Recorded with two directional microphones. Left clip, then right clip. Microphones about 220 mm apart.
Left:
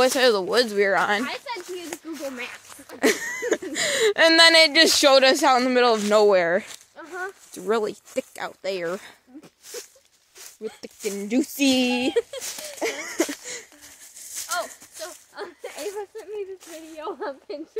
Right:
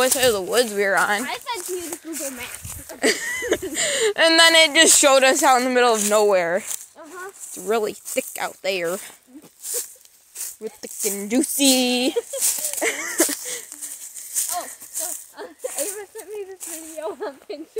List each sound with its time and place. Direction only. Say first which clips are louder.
0.0 s speech: even; 20° left (ahead or behind)
1.3 s speech: right 4 dB; 50° right (ahead or behind)
3.0 s speech: right 1 dB; 10° left (ahead or behind)
3.7 s speech: left 2 dB; 15° left (ahead or behind)
7.6 s speech: right 2 dB; 5° left (ahead or behind)
11.1 s speech: right 2 dB; 5° left (ahead or behind)
14.9 s rattle: right 4 dB; 55° right (ahead or behind)
15.4 s rattle: left 2 dB; centre (ahead or behind)
15.8 s a sound: right 2 dB; 55° right (ahead or behind)
17.0 s speech: right 2 dB; 5° left (ahead or behind)